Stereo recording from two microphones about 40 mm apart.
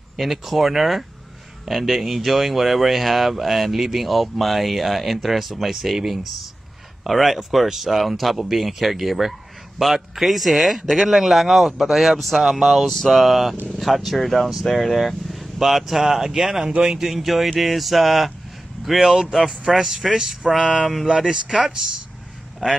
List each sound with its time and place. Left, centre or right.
0.2 s speech: centre
19.3 s speech: centre